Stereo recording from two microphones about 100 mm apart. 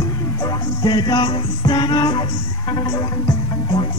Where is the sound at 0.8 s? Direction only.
50° left (ahead or behind).